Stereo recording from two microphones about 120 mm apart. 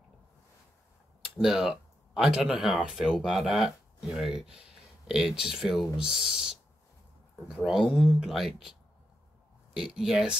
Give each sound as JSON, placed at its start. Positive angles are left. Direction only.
{"t": 1.4, "sound": "speech", "side_deg": -5}
{"t": 7.6, "sound": "speech", "side_deg": 0}
{"t": 9.8, "sound": "speech", "side_deg": -5}